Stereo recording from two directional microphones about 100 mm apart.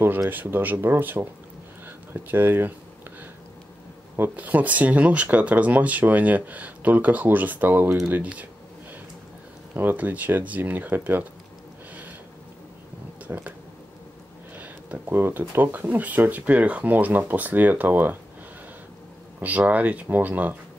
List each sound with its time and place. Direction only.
0.3 s speech: 20° right (ahead or behind)
4.2 s speech: 15° right (ahead or behind)
9.8 s speech: 20° right (ahead or behind)
13.3 s speech: 25° right (ahead or behind)
14.6 s speech: 20° right (ahead or behind)
19.4 s speech: 15° right (ahead or behind)